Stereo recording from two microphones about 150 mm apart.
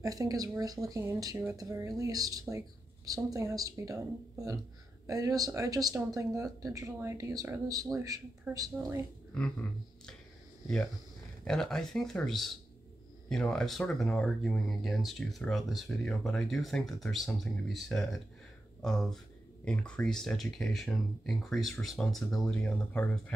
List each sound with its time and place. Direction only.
0.0 s speech: 25° right (ahead or behind)
9.3 s a sound: 5° left (ahead or behind)
11.4 s speech: 5° left (ahead or behind)